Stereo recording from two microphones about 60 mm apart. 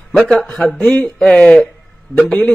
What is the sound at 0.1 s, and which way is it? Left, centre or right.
A man's voice, centre.